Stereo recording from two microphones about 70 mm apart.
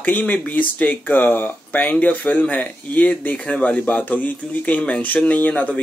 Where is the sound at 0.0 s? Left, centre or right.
Left.